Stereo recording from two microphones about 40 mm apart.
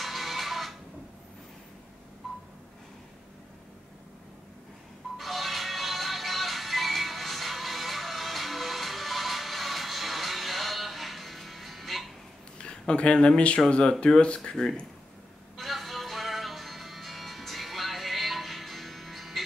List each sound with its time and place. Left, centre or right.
0.0 s music: centre
2.2 s telephone dialing: centre
5.1 s music: centre
12.5 s a sound: left
13.7 s speech: left
15.5 s music: centre